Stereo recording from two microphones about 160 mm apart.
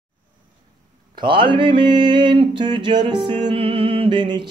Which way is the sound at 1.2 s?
30° right (ahead or behind).